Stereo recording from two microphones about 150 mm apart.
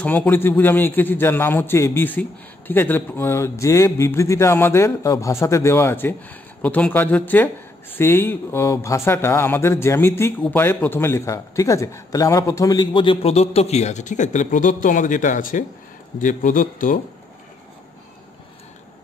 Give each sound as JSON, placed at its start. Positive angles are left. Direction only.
{"t": 0.0, "sound": "a man's voice", "side_deg": 10}